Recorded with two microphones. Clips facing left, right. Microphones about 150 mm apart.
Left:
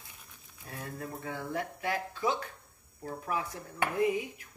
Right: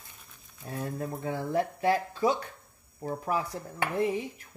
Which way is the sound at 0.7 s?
30° right (ahead or behind).